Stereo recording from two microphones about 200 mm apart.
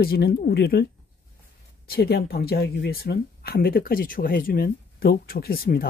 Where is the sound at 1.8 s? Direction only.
50° left (ahead or behind).